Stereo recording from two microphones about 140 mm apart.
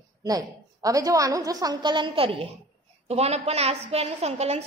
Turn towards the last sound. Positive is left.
turn(degrees=-50)  # may be behind; listen again after turning